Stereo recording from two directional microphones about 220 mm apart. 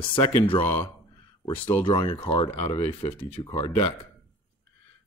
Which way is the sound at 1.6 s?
25° left (ahead or behind).